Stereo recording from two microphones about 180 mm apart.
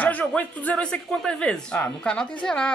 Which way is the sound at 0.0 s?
10° left (ahead or behind).